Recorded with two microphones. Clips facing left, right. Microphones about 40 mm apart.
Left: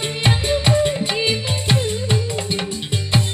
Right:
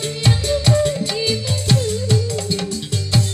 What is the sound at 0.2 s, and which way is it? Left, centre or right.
Music, left.